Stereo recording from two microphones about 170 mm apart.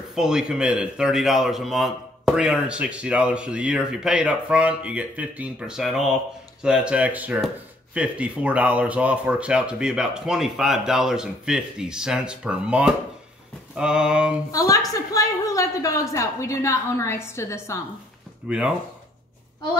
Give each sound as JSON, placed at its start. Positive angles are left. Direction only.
{"t": 0.1, "sound": "speech", "side_deg": -5}
{"t": 14.5, "sound": "a woman's voice", "side_deg": 20}
{"t": 18.4, "sound": "speech", "side_deg": -10}